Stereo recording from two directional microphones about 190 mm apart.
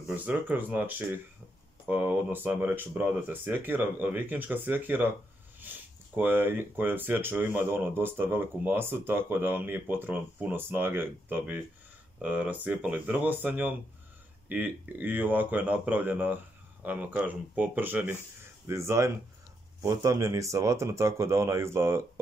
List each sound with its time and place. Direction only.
0.1 s speech: 10° right (ahead or behind)